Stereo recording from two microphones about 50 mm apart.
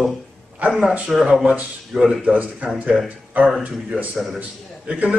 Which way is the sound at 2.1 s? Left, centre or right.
Right.